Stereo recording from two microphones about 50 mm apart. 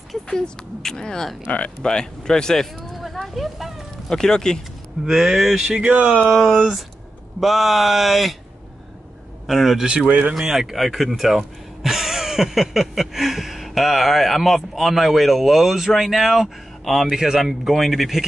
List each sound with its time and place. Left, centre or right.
0.1 s speech: centre
1.5 s speech: left
1.9 s speech: centre
3.0 s a sound: centre
4.1 s speech: centre
5.0 s speech: centre
5.9 s speech: right
7.3 s speech: centre
9.5 s speech: centre